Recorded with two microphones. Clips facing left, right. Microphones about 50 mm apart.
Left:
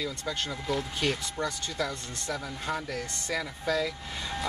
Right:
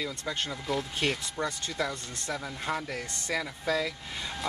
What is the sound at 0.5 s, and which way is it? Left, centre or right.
Speech, centre.